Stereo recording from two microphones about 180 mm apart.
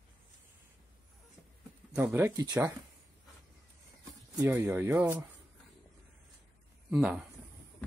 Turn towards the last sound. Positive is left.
turn(degrees=-5)  # may be behind; listen again after turning